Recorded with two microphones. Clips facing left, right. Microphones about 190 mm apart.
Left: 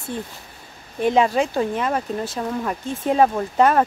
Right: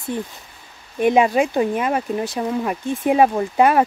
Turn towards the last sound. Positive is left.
turn(degrees=-10)  # may be behind; listen again after turning